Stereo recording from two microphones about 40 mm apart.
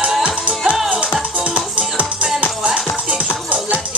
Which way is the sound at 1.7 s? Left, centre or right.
Right.